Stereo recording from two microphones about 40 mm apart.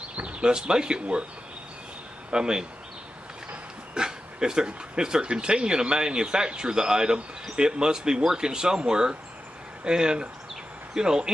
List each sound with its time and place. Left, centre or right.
0.1 s speech: right
2.3 s speech: centre
3.9 s speech: centre